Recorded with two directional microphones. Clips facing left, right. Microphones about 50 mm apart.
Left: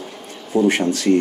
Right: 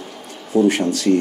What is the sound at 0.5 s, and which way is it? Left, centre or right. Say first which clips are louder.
Speech: right 1 dB; left.